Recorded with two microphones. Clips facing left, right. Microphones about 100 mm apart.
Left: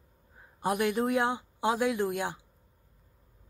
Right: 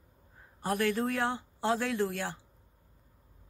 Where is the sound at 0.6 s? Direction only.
15° left (ahead or behind).